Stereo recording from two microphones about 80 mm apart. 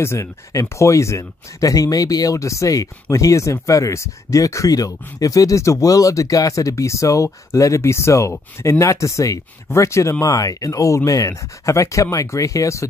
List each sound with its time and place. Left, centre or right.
0.0 s speech: left